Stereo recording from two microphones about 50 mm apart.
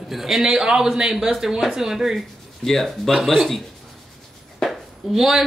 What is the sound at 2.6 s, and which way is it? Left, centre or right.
Speech, centre.